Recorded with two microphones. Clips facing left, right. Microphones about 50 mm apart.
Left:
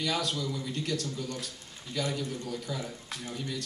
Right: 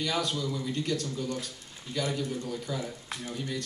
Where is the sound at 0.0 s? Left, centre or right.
Centre.